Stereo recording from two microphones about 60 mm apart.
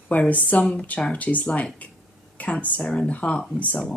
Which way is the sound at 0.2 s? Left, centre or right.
Left.